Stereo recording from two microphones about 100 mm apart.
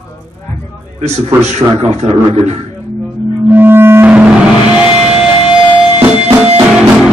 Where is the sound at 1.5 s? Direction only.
90° right.